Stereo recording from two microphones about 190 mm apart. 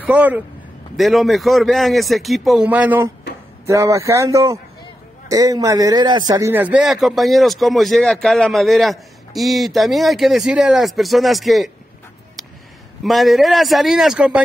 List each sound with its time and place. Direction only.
0.0 s speech: 10° right (ahead or behind)
13.0 s speech: centre (ahead or behind)